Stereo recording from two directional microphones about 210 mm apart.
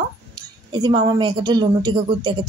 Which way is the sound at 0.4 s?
20° right (ahead or behind).